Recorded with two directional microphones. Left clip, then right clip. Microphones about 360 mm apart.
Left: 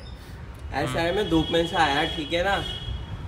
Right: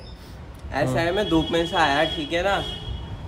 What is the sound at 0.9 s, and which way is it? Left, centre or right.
Speech, centre.